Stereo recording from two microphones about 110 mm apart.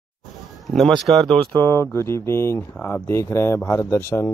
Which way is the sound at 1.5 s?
20° left (ahead or behind).